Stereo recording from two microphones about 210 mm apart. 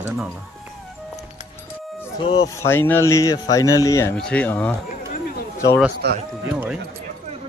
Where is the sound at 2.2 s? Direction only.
15° left (ahead or behind).